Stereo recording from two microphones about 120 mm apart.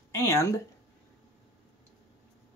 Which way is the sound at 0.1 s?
25° left (ahead or behind).